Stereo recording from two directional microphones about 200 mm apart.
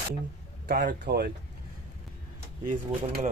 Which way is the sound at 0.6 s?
50° right (ahead or behind).